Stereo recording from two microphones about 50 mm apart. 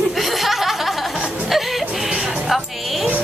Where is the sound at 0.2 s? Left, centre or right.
Centre.